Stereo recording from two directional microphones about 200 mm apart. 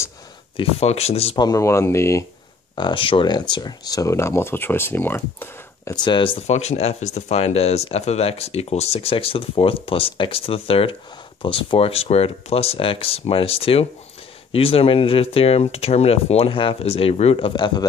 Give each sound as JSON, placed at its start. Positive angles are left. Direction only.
{"t": 0.6, "sound": "speech", "side_deg": 30}
{"t": 2.7, "sound": "speech", "side_deg": 25}